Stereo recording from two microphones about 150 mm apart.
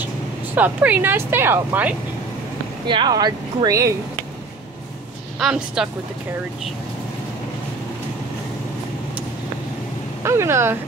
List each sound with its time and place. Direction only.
0.6 s speech: 10° right (ahead or behind)
2.9 s speech: 30° right (ahead or behind)
5.4 s speech: 5° right (ahead or behind)
10.2 s speech: 15° right (ahead or behind)